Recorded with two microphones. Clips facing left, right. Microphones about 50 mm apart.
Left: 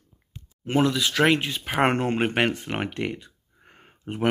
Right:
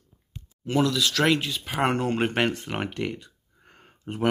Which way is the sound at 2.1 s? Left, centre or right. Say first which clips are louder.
Left 1 dB; left.